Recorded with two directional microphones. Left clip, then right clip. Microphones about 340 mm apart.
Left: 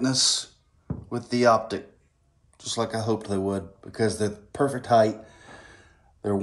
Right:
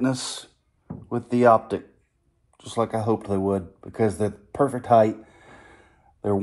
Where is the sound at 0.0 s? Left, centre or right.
Centre.